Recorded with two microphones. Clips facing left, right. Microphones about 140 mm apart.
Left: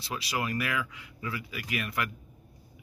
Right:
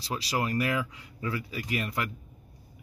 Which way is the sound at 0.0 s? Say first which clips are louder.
Right 3 dB; 35° right (ahead or behind).